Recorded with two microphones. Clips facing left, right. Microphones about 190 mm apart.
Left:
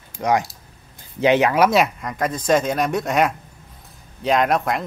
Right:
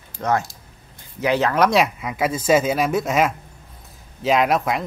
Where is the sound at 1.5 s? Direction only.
5° left (ahead or behind).